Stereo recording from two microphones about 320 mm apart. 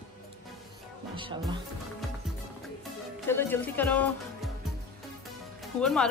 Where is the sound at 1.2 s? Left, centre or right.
Centre.